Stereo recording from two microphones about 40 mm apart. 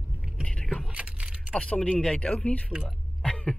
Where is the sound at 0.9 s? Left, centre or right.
Right.